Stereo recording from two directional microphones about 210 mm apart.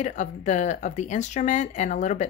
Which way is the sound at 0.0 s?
35° left (ahead or behind).